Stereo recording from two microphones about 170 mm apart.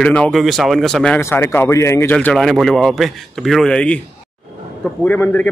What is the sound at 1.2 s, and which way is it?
Speech, 15° left (ahead or behind).